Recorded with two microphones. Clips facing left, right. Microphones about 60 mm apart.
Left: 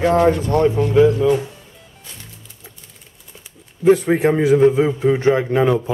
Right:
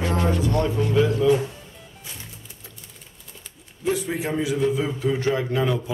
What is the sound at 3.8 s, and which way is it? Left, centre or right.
A man's voice, left.